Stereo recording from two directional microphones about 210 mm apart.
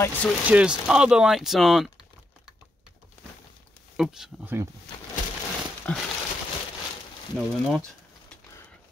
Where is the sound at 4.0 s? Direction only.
Centre (ahead or behind).